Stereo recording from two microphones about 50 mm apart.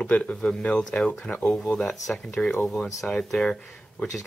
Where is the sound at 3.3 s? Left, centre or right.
Centre.